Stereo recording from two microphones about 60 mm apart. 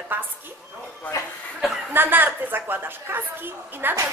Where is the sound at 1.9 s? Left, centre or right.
Right.